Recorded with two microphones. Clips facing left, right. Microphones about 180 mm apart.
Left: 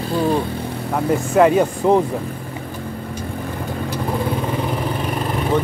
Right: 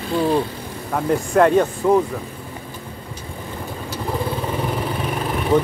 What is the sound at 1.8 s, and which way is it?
Speech, 20° left (ahead or behind).